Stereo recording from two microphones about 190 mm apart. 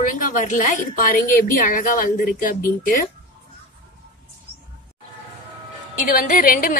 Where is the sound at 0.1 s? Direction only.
45° left (ahead or behind).